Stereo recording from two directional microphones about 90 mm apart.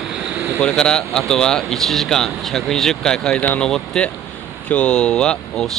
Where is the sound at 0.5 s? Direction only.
5° left (ahead or behind).